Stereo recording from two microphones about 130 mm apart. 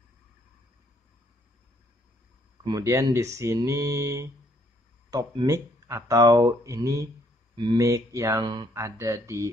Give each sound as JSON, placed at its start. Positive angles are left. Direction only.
{"t": 2.6, "sound": "speech", "side_deg": -25}
{"t": 5.1, "sound": "speech", "side_deg": -35}
{"t": 5.5, "sound": "speech", "side_deg": -25}